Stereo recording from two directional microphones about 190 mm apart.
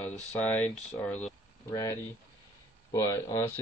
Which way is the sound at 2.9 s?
15° left (ahead or behind).